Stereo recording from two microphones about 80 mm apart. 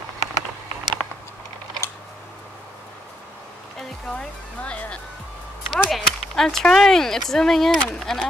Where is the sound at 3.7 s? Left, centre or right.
Centre.